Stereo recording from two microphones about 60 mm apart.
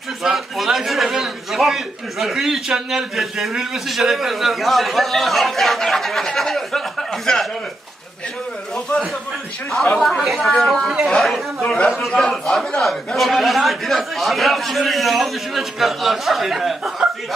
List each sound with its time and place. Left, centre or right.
0.2 s a man's voice: centre
8.9 s a man's voice: centre
10.0 s a man's voice: centre